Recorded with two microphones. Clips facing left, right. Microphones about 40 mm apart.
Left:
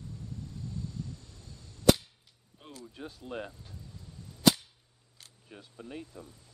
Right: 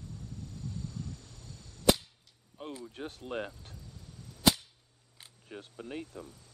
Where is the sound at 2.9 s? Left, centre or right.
Right.